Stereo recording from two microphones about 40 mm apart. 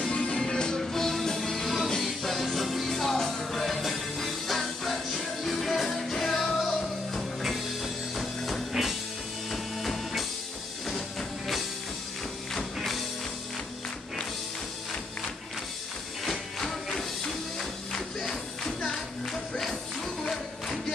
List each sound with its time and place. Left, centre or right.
0.0 s music: left
0.7 s music: centre
12.7 s music: centre
16.3 s music: centre